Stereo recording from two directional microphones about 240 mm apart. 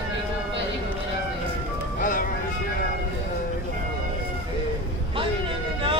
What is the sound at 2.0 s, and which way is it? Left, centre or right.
Music, left.